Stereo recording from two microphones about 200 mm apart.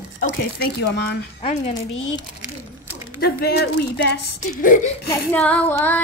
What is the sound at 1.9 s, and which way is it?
Speech, 70° left (ahead or behind).